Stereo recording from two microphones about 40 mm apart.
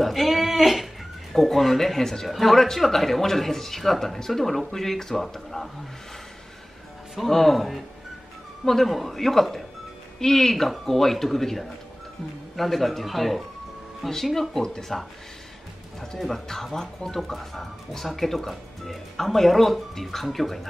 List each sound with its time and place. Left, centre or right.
0.0 s a sound: centre
1.3 s speech: centre
7.2 s speech: centre
16.2 s speech: centre